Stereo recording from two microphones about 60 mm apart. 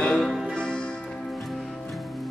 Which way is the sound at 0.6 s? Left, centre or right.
Centre.